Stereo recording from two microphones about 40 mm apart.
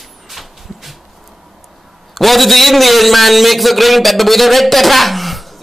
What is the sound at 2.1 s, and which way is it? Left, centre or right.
A man's voice, centre.